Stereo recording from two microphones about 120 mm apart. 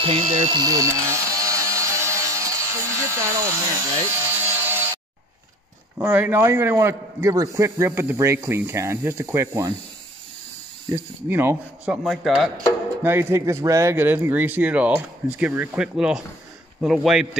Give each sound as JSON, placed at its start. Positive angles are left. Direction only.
{"t": 0.0, "sound": "speech", "side_deg": -50}
{"t": 0.6, "sound": "a sound", "side_deg": -30}
{"t": 5.9, "sound": "a man's voice", "side_deg": -15}
{"t": 11.2, "sound": "speech", "side_deg": -15}
{"t": 12.0, "sound": "speech", "side_deg": 0}
{"t": 13.0, "sound": "speech", "side_deg": -20}